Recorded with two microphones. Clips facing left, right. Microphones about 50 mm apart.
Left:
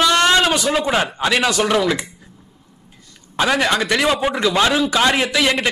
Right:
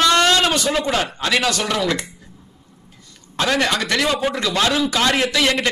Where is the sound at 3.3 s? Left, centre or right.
Centre.